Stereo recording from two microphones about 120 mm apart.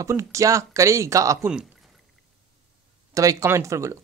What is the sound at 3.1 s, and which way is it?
Speech, 30° right (ahead or behind).